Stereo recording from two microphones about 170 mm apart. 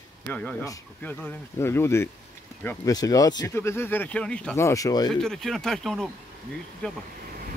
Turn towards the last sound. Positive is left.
turn(degrees=5)  # may be behind; listen again after turning